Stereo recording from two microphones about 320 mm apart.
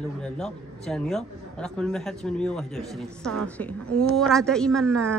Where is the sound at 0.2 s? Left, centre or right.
Centre.